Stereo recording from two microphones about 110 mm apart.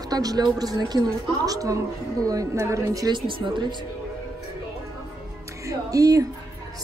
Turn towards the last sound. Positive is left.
turn(degrees=-30)  # may be behind; listen again after turning